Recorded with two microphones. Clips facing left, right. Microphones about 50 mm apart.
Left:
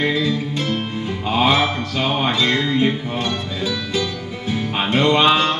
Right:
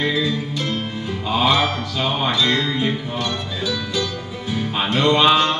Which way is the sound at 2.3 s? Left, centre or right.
Left.